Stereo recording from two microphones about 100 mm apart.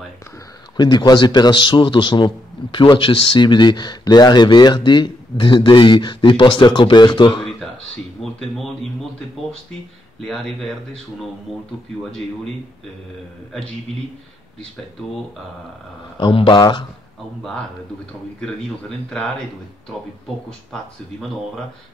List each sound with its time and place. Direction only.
0.7 s a man's voice: 45° left (ahead or behind)
8.2 s speech: centre (ahead or behind)
10.2 s a man's voice: 5° left (ahead or behind)
16.2 s speech: 55° left (ahead or behind)
16.5 s speech: 40° left (ahead or behind)
17.4 s a man's voice: 10° left (ahead or behind)
20.4 s a man's voice: 5° left (ahead or behind)